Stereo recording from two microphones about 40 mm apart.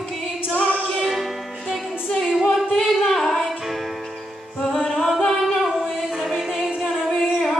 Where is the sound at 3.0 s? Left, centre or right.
Centre.